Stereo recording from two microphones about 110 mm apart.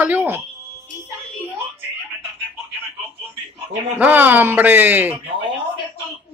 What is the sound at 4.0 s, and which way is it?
Speech, 15° right (ahead or behind).